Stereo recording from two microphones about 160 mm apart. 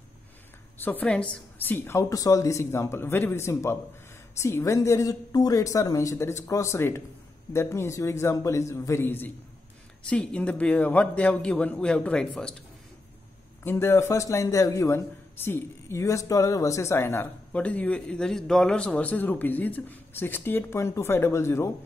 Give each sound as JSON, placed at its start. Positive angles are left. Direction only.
{"t": 0.7, "sound": "a woman's voice", "side_deg": 10}
{"t": 13.7, "sound": "speech", "side_deg": 15}